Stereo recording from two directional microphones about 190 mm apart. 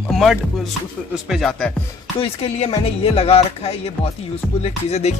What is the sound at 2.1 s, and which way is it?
Music, 30° left (ahead or behind).